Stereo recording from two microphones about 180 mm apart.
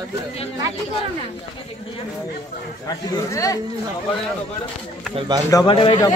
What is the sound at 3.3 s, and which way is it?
Speech, 20° left (ahead or behind).